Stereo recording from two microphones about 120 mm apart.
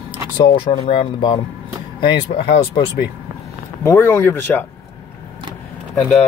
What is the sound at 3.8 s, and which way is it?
Speech, 20° left (ahead or behind).